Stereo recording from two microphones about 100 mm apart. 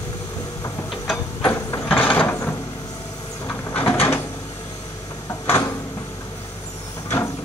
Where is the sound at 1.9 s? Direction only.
15° left (ahead or behind).